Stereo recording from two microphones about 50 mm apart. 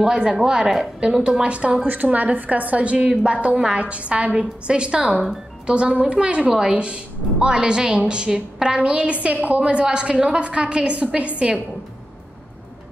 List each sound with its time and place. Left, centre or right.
0.0 s a woman's voice: centre
1.9 s a woman's voice: right
3.1 s a woman's voice: centre
3.3 s a woman's voice: right